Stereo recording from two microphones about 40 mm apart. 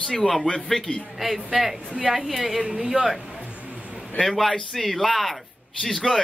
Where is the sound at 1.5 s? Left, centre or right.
Centre.